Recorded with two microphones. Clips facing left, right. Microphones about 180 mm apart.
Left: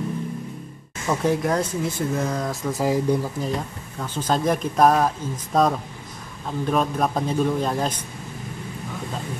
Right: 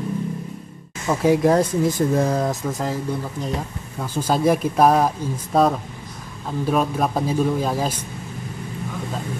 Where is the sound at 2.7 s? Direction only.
5° left (ahead or behind).